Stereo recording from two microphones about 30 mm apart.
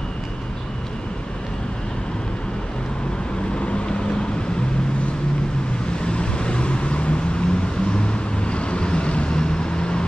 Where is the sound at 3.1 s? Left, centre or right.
Left.